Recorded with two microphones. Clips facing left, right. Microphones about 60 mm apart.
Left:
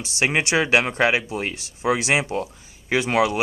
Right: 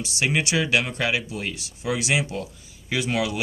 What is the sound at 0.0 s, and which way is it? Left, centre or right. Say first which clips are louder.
Speech: left 2 dB; left.